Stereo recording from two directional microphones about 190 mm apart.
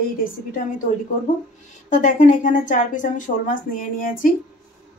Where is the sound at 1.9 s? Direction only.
40° left (ahead or behind).